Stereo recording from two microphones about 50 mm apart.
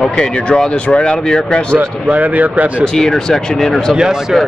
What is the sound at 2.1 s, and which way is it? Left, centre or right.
Speech, right.